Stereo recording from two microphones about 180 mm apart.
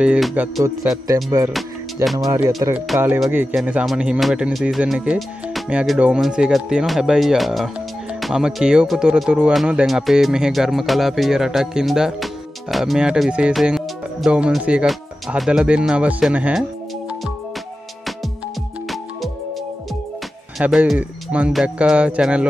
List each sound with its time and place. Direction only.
0.0 s speech: 5° right (ahead or behind)
0.8 s speech: 15° right (ahead or behind)
2.4 s speech: 10° right (ahead or behind)
20.5 s speech: 5° right (ahead or behind)